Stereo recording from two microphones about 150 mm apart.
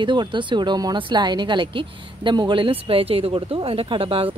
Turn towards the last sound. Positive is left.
turn(degrees=-40)  # may be behind; listen again after turning